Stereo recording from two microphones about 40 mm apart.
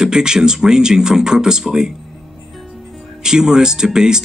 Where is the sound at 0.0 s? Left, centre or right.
Centre.